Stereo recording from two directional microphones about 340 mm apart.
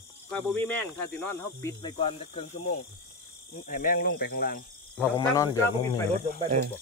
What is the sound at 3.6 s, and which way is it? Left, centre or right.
Speech, left.